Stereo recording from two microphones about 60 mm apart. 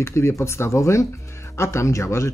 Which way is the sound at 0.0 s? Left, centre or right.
Left.